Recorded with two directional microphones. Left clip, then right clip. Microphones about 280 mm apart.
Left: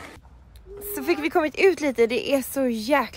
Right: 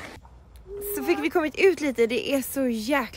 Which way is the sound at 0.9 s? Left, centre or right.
Centre.